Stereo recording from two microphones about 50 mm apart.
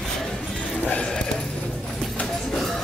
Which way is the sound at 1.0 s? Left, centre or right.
Centre.